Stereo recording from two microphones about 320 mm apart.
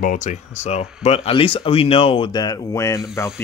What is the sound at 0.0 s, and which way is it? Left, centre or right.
Speech, left.